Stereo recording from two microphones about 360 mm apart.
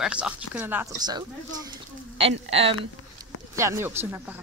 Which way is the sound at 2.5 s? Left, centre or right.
Centre.